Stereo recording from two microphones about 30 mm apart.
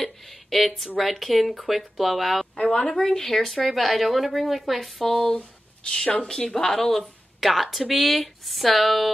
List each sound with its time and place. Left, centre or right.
0.0 s a sound: centre
0.9 s speech: centre
2.6 s a woman's voice: left
3.0 s a woman's voice: centre
5.0 s a woman's voice: centre
7.3 s a woman's voice: centre